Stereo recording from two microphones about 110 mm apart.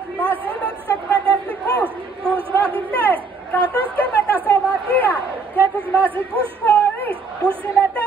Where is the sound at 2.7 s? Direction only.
15° left (ahead or behind).